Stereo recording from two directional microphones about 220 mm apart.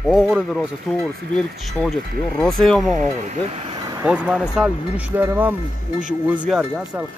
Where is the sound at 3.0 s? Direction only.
35° right (ahead or behind).